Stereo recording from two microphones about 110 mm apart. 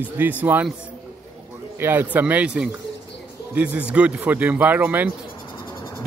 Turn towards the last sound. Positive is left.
turn(degrees=-15)  # may be behind; listen again after turning